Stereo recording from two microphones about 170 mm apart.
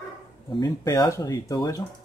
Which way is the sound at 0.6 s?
20° left (ahead or behind).